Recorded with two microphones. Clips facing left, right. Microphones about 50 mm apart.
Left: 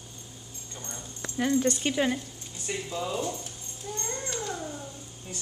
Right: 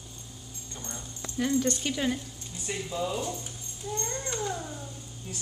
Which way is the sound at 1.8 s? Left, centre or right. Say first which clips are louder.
Left 3 dB; centre.